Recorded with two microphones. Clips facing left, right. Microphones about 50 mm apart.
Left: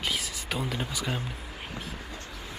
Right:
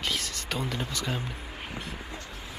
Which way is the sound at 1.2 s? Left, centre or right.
Centre.